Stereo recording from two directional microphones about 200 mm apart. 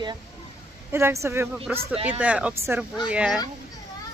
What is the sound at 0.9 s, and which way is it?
A woman's voice, 10° right (ahead or behind).